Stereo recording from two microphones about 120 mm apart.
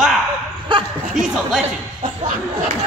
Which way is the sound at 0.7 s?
45° right (ahead or behind).